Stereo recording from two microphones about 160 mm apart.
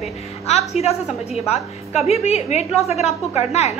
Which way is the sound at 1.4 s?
40° left (ahead or behind).